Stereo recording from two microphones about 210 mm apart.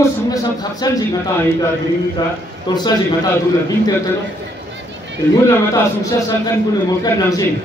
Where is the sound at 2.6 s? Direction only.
20° left (ahead or behind).